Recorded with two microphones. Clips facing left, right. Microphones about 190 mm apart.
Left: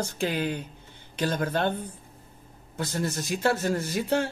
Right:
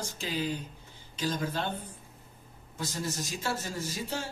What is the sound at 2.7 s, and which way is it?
Speech, 60° left (ahead or behind).